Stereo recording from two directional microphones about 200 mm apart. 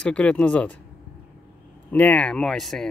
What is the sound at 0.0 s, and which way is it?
Speech, 5° left (ahead or behind).